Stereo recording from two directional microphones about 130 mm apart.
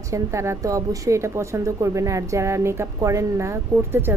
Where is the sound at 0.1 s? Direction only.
20° right (ahead or behind).